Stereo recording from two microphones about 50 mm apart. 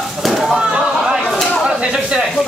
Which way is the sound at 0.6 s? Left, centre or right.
Centre.